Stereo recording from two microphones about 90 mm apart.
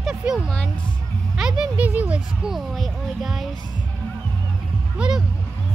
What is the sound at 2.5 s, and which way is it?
Speech, centre (ahead or behind).